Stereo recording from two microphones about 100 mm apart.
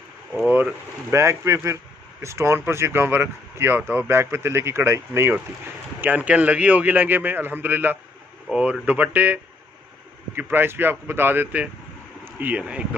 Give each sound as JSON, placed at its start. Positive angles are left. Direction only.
{"t": 0.5, "sound": "speech", "side_deg": -15}
{"t": 1.1, "sound": "a man's voice", "side_deg": -30}
{"t": 8.5, "sound": "a man's voice", "side_deg": -10}